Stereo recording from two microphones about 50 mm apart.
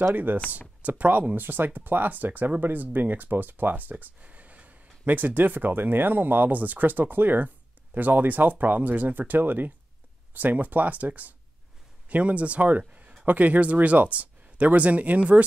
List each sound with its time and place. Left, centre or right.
0.1 s speech: right